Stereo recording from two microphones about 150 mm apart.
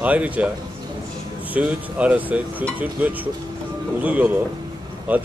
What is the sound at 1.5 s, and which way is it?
Speech, 10° right (ahead or behind).